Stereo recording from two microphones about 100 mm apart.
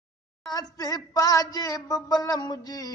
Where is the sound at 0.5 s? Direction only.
40° left (ahead or behind).